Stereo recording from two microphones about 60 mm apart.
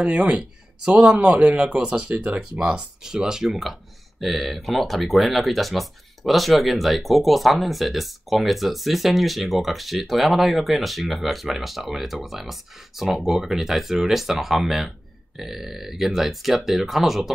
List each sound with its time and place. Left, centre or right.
0.0 s speech: centre
2.6 s speech: centre